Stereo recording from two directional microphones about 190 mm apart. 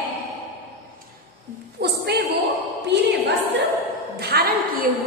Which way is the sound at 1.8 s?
55° right (ahead or behind).